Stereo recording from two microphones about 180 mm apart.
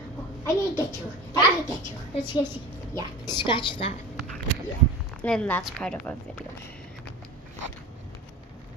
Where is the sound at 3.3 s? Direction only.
25° left (ahead or behind).